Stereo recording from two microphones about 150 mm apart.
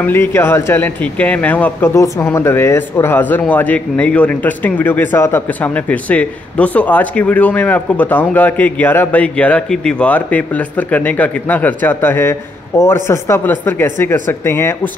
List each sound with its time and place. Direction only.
0.0 s a man's voice: 15° left (ahead or behind)